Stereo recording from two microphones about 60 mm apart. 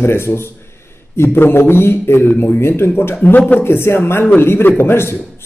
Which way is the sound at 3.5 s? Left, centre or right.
Left.